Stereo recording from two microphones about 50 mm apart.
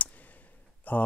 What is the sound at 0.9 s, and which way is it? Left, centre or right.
Speech, left.